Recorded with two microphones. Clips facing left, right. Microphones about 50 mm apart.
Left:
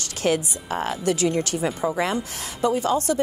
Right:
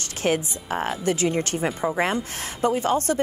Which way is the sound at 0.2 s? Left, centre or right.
Right.